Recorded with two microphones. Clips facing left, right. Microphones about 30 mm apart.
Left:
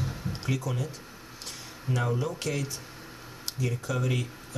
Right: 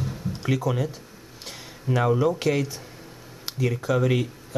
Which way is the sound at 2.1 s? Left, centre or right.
Centre.